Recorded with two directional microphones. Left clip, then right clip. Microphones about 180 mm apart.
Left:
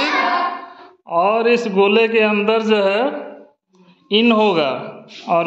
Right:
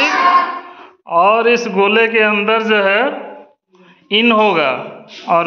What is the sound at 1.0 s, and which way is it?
A man's voice, 15° left (ahead or behind).